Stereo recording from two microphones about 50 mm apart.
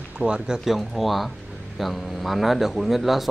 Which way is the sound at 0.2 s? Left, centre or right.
Centre.